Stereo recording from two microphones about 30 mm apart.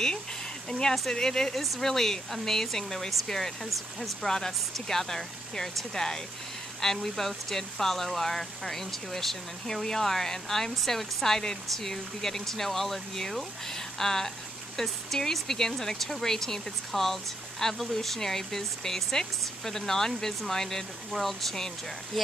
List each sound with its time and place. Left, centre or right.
0.7 s speech: left
1.6 s speech: centre
1.9 s speech: centre